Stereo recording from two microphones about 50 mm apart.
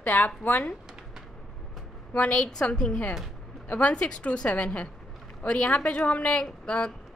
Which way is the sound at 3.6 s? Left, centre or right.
Left.